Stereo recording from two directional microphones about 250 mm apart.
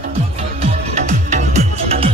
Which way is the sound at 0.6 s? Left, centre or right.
Right.